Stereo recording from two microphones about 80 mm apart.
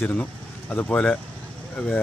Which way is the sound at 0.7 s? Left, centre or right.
Centre.